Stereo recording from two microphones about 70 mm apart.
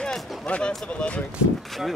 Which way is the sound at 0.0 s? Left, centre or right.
Centre.